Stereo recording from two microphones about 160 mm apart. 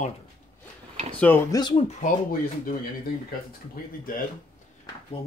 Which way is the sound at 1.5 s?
25° left (ahead or behind).